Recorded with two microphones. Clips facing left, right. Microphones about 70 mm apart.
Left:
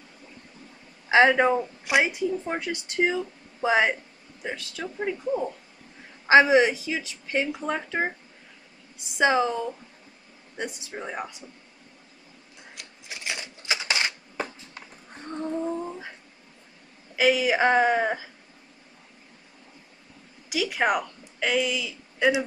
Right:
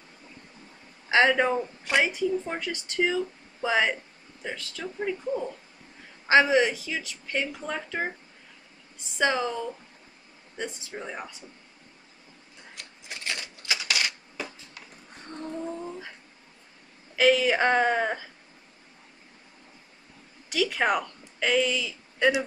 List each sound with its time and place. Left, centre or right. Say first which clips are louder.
1.0 s a man's voice: left 3 dB; centre
9.2 s speech: left 4 dB; centre
10.9 s a woman's voice: left 3 dB; centre
12.8 s a sound: even; centre
13.2 s typewriter: left 1 dB; centre
17.1 s a woman's voice: even; centre
20.4 s a woman's voice: left 1 dB; centre